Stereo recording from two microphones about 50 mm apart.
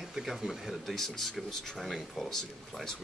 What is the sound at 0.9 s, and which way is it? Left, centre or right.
Speech, centre.